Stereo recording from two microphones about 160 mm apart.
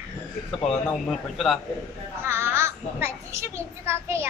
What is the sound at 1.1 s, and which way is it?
Speech, centre (ahead or behind).